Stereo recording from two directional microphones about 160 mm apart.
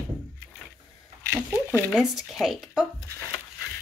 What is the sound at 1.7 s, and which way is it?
Speech, 10° left (ahead or behind).